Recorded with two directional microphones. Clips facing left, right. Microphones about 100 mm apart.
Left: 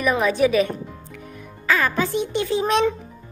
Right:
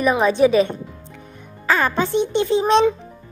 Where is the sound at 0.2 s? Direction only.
30° right (ahead or behind).